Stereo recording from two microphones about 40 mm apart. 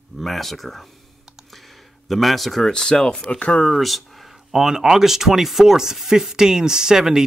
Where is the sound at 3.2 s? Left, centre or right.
Left.